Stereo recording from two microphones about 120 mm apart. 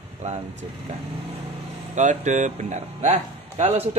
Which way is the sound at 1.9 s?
90° right.